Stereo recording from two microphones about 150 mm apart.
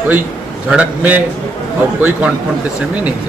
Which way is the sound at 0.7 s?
10° right (ahead or behind).